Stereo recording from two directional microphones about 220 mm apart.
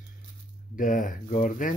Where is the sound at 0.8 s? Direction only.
35° left (ahead or behind).